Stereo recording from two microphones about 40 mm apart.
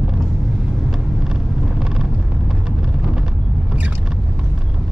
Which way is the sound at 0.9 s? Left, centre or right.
Centre.